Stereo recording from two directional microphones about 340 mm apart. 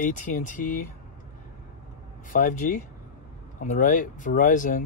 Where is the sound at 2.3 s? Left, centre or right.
Left.